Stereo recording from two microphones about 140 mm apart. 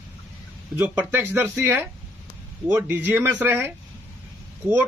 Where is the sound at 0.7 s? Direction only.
15° right (ahead or behind).